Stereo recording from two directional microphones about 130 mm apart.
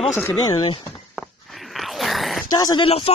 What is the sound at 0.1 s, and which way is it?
Speech, 15° left (ahead or behind).